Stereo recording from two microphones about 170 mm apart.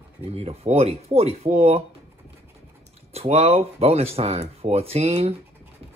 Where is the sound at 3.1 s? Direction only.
40° right (ahead or behind).